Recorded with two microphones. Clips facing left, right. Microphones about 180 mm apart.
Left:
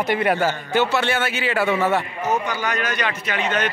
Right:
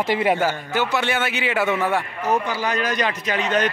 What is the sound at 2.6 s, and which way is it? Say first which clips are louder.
A man's voice: right 2 dB; 35° right (ahead or behind).